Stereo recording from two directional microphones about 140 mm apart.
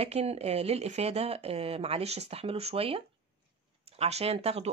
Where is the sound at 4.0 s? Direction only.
45° right (ahead or behind).